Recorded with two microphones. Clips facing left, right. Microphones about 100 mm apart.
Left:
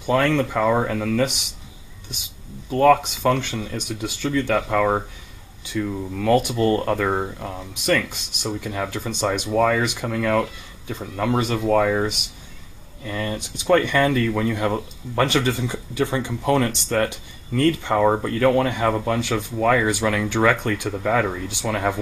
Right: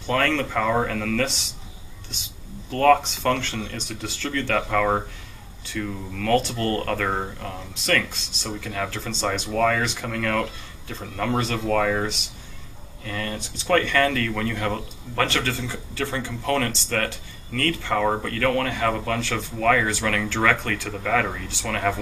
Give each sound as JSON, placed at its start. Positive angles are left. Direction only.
{"t": 0.0, "sound": "speech", "side_deg": 15}
{"t": 2.7, "sound": "speech", "side_deg": 10}